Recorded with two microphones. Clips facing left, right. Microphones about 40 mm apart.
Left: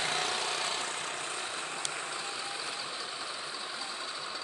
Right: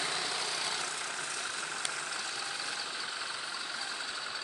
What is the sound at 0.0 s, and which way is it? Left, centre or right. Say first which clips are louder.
Vehicle: left 3 dB; left.